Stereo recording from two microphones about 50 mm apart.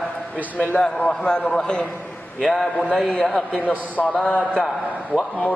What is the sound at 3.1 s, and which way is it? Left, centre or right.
A man's voice, left.